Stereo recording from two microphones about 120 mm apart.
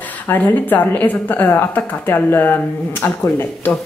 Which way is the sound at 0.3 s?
15° left (ahead or behind).